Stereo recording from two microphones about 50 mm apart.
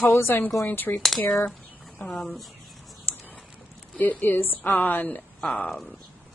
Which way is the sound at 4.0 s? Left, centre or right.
Left.